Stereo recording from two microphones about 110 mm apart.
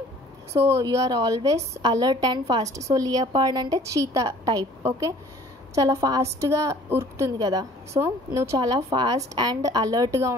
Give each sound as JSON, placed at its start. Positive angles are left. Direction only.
{"t": 0.5, "sound": "a woman's voice", "side_deg": -25}
{"t": 8.5, "sound": "a woman's voice", "side_deg": -40}